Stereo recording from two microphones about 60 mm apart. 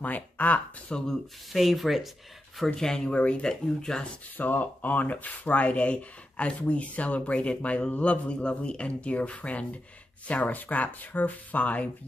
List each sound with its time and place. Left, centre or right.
0.0 s speech: left
1.5 s speech: centre
2.6 s speech: centre
4.4 s speech: left